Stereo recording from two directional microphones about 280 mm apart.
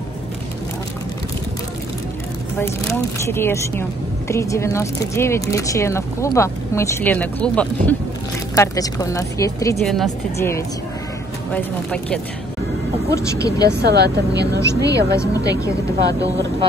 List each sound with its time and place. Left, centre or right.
2.6 s speech: centre
9.8 s speech: centre
13.7 s speech: right
15.1 s speech: centre